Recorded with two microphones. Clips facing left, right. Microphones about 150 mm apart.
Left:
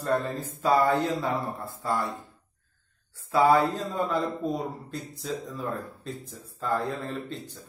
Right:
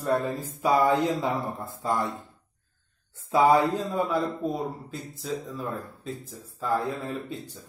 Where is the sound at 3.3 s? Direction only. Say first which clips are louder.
Right 1 dB; 15° right (ahead or behind).